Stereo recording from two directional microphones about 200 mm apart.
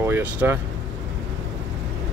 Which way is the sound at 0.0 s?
10° right (ahead or behind).